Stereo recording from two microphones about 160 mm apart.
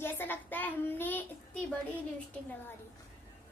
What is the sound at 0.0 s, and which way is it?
Child singing, 10° left (ahead or behind).